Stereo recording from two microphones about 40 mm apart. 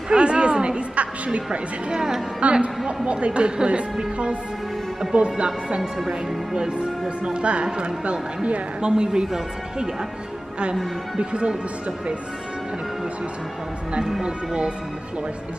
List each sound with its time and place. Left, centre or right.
0.1 s speech: right
5.8 s speech: centre
6.5 s speech: right
11.1 s speech: right
14.2 s speech: right